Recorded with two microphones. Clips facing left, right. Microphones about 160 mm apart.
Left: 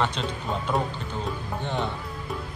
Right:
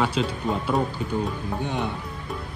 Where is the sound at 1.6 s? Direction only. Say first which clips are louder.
Even; 15° right (ahead or behind).